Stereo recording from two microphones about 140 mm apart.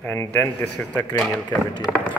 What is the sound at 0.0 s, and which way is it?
Speech, 15° left (ahead or behind).